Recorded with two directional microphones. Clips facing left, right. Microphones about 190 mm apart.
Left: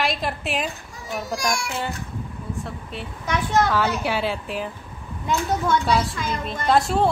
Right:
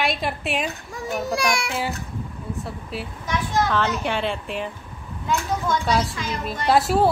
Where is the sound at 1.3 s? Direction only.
65° right (ahead or behind).